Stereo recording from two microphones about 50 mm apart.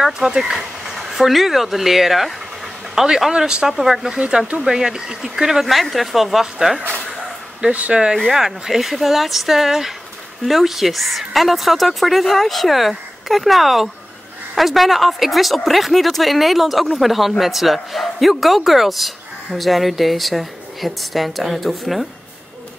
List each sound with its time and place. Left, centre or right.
0.0 s speech: centre
7.7 s speech: right
8.3 s speech: centre